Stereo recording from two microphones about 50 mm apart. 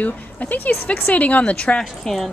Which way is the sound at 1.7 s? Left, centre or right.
Centre.